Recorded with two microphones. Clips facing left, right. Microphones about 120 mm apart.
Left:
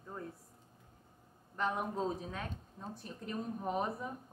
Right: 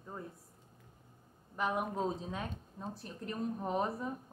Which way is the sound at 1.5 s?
10° right (ahead or behind).